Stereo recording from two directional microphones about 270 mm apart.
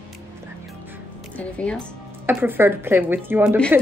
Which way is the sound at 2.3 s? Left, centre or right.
Centre.